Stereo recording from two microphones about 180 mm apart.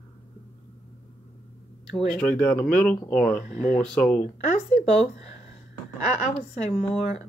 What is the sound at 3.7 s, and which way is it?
Speech, 5° left (ahead or behind).